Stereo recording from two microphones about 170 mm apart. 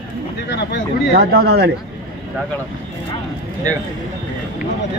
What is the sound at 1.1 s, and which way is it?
Speech, 65° right (ahead or behind).